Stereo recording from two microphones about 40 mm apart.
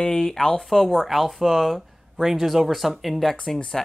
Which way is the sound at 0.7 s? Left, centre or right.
Centre.